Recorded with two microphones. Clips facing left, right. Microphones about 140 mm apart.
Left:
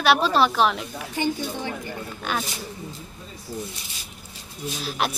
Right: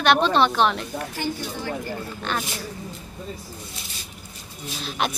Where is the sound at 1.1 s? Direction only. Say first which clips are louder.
Left 7 dB; 15° left (ahead or behind).